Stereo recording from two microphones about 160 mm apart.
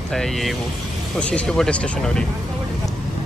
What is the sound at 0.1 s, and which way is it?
Speech, centre (ahead or behind).